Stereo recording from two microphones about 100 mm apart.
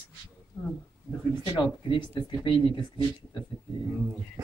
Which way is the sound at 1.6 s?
50° left (ahead or behind).